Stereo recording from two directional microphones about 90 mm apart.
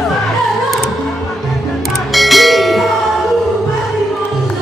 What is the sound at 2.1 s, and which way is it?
Music, centre (ahead or behind).